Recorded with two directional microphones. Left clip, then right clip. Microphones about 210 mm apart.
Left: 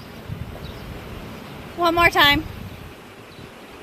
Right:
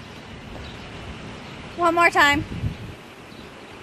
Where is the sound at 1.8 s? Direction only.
Centre (ahead or behind).